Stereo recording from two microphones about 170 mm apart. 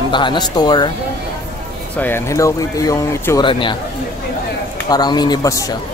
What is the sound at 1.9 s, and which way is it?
A man's voice, 10° left (ahead or behind).